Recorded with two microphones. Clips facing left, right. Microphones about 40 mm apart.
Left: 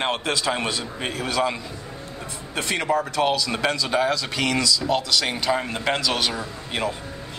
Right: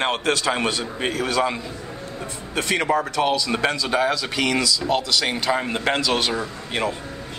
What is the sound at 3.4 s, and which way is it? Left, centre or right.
Speech, centre.